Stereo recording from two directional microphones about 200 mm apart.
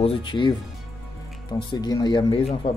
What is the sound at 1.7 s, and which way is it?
Speech, 20° left (ahead or behind).